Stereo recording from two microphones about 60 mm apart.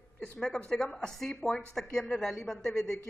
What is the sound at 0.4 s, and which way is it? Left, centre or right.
A woman's voice, centre.